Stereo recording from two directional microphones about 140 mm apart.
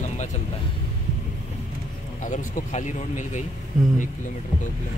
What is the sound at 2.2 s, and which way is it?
Speech, 60° left (ahead or behind).